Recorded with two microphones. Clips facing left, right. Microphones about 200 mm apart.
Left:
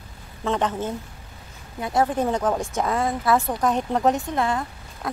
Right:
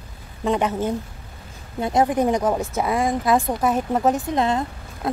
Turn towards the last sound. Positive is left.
turn(degrees=-25)  # may be behind; listen again after turning